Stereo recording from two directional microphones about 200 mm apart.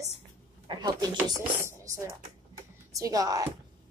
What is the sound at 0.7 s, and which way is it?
Speech, 20° right (ahead or behind).